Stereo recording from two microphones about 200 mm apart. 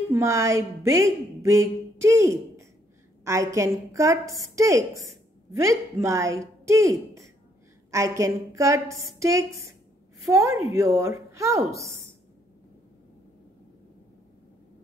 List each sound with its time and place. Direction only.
0.1 s a woman's voice: 15° right (ahead or behind)